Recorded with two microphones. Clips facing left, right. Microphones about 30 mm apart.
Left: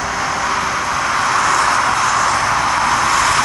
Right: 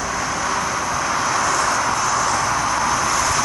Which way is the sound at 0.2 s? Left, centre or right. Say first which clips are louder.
Left 5 dB; left.